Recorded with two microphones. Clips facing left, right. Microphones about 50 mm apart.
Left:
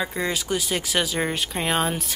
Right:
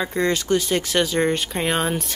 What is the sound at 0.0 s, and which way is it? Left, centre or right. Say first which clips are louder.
Speech: right 4 dB; centre.